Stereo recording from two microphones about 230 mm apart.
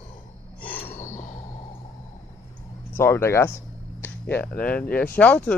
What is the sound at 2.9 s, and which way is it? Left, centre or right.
Speech, centre.